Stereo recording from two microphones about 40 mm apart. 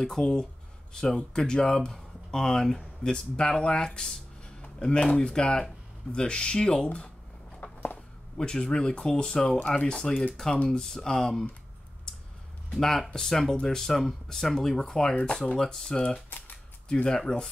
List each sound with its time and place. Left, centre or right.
0.0 s speech: centre
7.6 s a sound: left
8.4 s speech: left
10.3 s speech: centre
13.1 s speech: centre
16.3 s typewriter: left
16.9 s speech: centre